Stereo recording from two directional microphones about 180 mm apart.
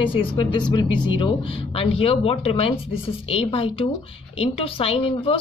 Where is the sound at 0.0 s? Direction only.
30° left (ahead or behind).